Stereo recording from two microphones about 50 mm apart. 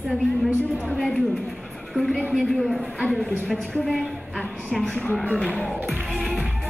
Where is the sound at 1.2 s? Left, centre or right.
Centre.